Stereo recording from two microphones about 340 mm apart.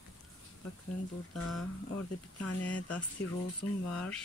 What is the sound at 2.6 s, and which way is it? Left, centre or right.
Speech, centre.